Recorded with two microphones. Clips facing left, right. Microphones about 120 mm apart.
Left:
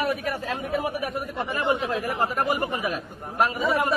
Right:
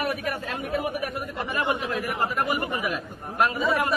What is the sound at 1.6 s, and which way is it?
Speech, 25° left (ahead or behind).